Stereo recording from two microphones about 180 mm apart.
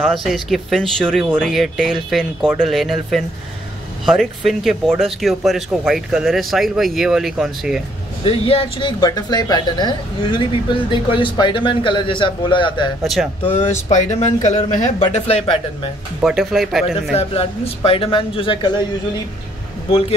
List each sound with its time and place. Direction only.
0.0 s speech: centre (ahead or behind)
8.2 s speech: 30° left (ahead or behind)
13.0 s speech: centre (ahead or behind)
13.5 s speech: 40° left (ahead or behind)
16.2 s speech: 5° right (ahead or behind)
17.1 s speech: 35° left (ahead or behind)
19.9 s speech: 30° left (ahead or behind)